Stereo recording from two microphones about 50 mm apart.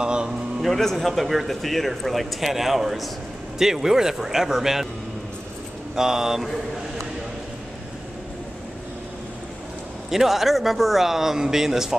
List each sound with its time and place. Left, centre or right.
0.0 s speech: centre
0.6 s speech: centre
5.9 s speech: centre
10.1 s speech: centre